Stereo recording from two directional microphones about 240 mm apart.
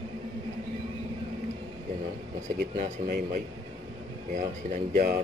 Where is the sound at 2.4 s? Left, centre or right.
Right.